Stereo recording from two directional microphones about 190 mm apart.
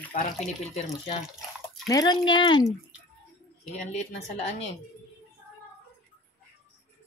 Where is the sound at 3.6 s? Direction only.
40° left (ahead or behind).